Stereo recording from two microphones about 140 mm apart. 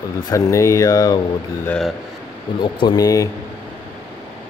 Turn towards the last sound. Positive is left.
turn(degrees=25)  # may be behind; listen again after turning